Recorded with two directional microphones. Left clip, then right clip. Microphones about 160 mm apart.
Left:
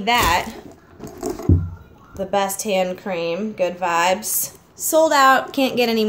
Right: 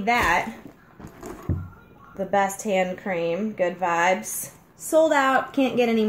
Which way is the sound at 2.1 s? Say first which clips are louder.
Left 2 dB; 10° right (ahead or behind).